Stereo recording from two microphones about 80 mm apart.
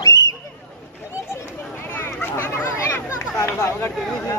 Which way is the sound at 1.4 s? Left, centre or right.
Left.